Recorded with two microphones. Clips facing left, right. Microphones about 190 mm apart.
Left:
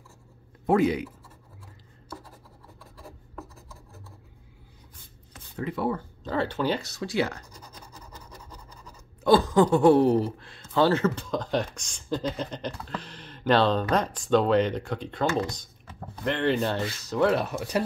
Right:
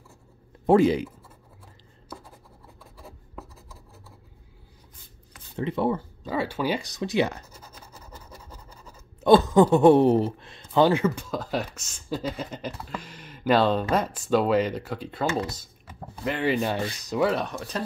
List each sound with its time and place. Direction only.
0.7 s speech: 30° right (ahead or behind)
5.6 s speech: 25° right (ahead or behind)
5.9 s speech: 10° right (ahead or behind)
7.5 s scratch: 10° right (ahead or behind)
9.2 s speech: 20° right (ahead or behind)
17.2 s speech: centre (ahead or behind)